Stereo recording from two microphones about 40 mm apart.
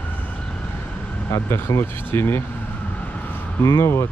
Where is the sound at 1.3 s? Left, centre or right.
Left.